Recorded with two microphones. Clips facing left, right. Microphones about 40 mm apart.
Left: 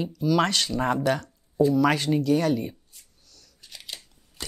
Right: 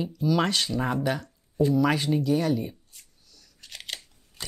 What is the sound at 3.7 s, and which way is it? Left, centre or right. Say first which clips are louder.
Scissors: right 3 dB; right.